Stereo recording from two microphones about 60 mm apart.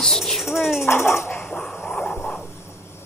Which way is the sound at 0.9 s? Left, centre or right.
Left.